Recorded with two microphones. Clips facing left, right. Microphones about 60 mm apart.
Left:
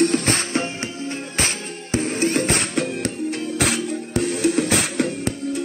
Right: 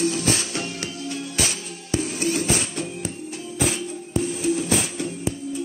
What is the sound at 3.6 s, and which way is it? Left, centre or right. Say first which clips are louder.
Music: left 1 dB; left.